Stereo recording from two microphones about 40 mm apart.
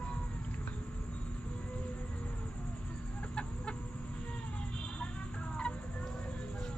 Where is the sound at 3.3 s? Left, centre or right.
Left.